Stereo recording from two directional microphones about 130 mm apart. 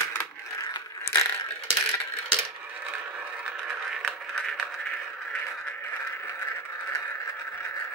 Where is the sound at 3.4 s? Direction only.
Centre (ahead or behind).